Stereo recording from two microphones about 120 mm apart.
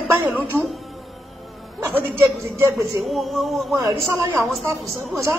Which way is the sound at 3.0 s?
Centre (ahead or behind).